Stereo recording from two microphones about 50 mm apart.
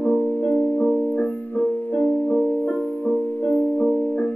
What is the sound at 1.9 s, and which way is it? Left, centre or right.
Keyboard, left.